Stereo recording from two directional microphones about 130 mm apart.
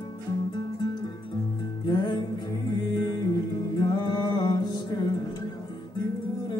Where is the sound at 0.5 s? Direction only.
35° left (ahead or behind).